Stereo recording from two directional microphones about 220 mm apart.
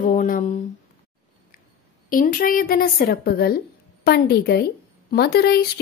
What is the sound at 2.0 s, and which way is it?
Speech, 40° left (ahead or behind).